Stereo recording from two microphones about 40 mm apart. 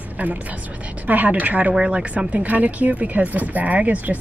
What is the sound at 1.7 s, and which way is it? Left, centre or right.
Speech, right.